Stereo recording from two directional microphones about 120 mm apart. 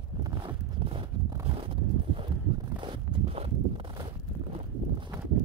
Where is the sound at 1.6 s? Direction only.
50° right (ahead or behind).